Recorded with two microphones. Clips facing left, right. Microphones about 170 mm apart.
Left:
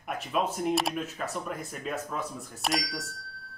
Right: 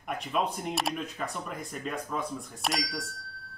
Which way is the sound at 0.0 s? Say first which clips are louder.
Left 1 dB; centre (ahead or behind).